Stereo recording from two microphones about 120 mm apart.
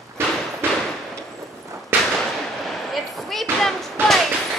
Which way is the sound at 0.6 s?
20° right (ahead or behind).